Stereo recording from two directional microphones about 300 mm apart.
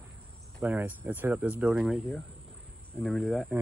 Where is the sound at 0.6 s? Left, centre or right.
Centre.